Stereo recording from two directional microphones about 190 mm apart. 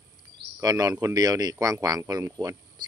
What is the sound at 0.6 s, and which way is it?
Speech, 20° right (ahead or behind).